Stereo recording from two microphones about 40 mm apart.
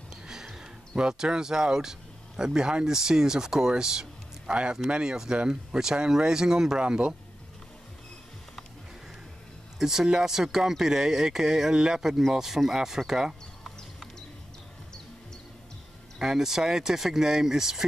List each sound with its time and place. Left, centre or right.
0.1 s a sound: centre
0.6 s speech: centre
9.8 s speech: centre
16.2 s speech: centre